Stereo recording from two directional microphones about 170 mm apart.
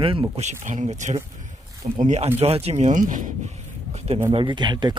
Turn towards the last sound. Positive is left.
turn(degrees=-25)  # may be behind; listen again after turning